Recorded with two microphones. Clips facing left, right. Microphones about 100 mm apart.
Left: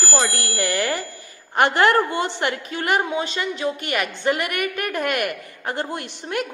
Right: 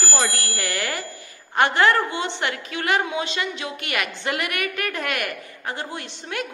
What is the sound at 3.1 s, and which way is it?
A woman's voice, 40° left (ahead or behind).